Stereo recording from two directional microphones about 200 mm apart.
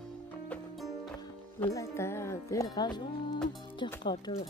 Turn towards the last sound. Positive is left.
turn(degrees=25)  # may be behind; listen again after turning